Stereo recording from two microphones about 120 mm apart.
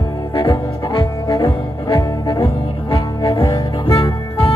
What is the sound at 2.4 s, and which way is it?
Music, 25° left (ahead or behind).